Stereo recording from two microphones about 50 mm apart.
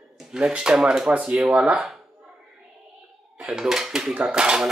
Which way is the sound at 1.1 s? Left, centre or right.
Right.